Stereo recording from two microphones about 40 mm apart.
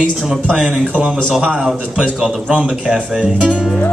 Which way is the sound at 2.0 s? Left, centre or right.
Right.